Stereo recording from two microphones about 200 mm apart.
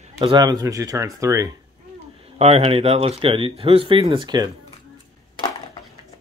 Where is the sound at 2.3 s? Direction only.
30° right (ahead or behind).